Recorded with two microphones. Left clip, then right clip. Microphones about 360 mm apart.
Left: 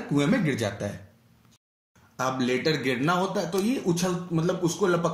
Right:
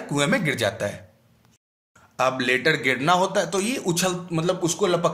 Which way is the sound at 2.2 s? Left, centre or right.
Right.